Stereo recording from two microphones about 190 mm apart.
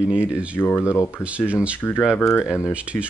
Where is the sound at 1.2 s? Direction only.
5° right (ahead or behind).